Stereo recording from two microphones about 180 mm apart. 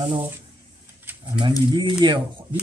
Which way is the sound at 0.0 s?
30° right (ahead or behind).